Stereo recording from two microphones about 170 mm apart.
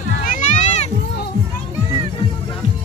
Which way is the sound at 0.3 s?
45° left (ahead or behind).